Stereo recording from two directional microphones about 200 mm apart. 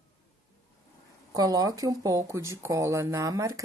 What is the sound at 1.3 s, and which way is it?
Speech, 20° right (ahead or behind).